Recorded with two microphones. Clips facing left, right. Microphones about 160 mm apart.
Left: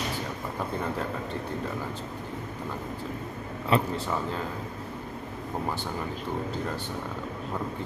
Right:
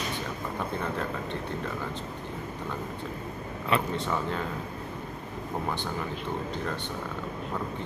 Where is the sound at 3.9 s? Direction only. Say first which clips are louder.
Even; 5° left (ahead or behind).